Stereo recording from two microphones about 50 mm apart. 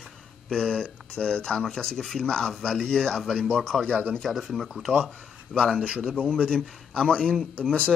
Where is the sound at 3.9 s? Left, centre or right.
Right.